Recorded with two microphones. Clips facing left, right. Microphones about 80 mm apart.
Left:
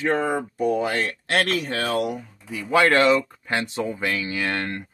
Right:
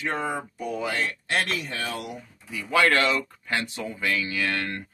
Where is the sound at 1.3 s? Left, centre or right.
Left.